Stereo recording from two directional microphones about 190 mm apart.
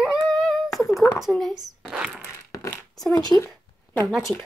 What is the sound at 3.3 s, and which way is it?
Speech, 20° left (ahead or behind).